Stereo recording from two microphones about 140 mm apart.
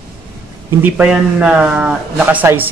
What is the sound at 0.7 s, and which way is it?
A man's voice, 10° right (ahead or behind).